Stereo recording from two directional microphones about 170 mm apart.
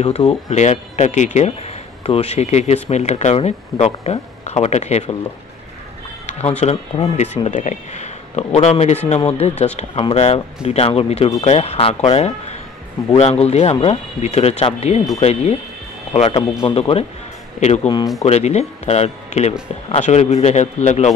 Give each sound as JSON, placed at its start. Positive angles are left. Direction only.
{"t": 0.0, "sound": "speech", "side_deg": 40}
{"t": 6.2, "sound": "a sound", "side_deg": 40}
{"t": 6.6, "sound": "speech", "side_deg": 40}